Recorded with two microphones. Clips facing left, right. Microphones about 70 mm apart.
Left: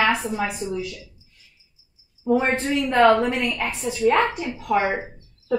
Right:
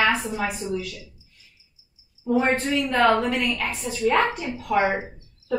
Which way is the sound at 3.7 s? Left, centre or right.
Centre.